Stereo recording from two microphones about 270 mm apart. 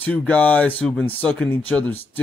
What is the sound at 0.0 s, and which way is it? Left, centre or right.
Speech, centre.